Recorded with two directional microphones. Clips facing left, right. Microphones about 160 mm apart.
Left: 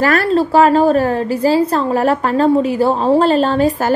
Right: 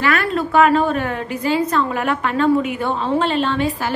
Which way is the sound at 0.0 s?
40° left (ahead or behind).